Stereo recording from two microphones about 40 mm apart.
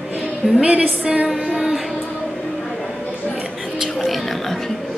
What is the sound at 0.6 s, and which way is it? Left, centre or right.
Speech, right.